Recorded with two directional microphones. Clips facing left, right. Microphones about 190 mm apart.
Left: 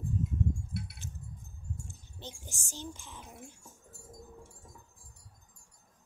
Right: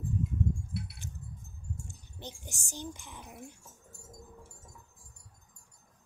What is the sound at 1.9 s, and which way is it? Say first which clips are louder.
Speech: right 1 dB; 15° right (ahead or behind).